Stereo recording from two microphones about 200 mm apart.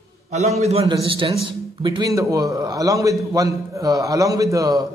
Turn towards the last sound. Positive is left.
turn(degrees=-15)  # may be behind; listen again after turning